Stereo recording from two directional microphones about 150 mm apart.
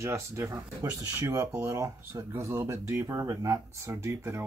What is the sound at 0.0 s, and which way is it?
Speech, 20° right (ahead or behind).